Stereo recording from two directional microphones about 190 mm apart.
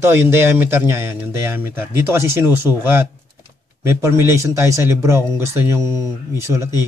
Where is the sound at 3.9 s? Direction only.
15° right (ahead or behind).